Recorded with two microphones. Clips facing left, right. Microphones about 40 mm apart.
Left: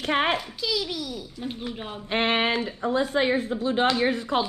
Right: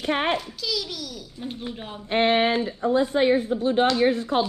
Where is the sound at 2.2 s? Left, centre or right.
Left.